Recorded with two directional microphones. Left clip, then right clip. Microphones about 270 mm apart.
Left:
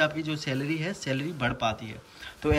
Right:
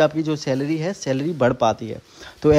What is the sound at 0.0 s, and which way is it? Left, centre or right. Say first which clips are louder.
A man's voice: right 8 dB; centre.